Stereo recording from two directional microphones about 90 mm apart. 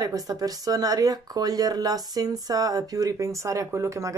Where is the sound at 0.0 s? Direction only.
40° right (ahead or behind).